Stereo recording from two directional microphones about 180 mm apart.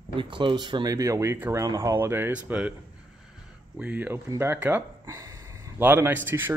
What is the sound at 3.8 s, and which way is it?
Speech, 10° right (ahead or behind).